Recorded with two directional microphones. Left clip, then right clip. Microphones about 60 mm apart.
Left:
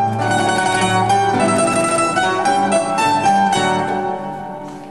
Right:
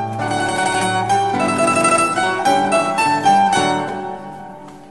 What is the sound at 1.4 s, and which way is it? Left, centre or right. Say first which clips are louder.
Mandolin: even; left.